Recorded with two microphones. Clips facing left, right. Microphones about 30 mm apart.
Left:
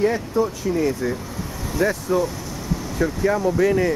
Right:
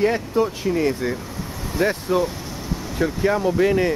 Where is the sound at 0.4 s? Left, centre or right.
Right.